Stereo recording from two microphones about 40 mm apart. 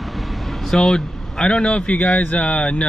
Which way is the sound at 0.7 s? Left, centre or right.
Centre.